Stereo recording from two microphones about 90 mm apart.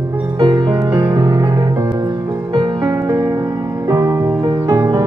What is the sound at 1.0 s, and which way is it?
Music, 45° right (ahead or behind).